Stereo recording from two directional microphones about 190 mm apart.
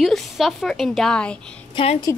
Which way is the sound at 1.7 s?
25° left (ahead or behind).